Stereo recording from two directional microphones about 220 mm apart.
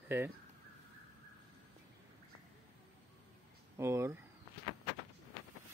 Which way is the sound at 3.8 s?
10° right (ahead or behind).